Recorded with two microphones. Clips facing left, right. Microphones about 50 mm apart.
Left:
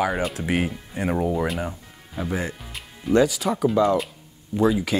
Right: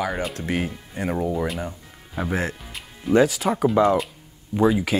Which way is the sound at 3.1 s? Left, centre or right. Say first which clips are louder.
Right 1 dB; right.